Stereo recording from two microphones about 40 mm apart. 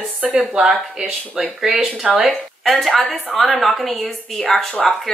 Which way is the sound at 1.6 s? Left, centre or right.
Centre.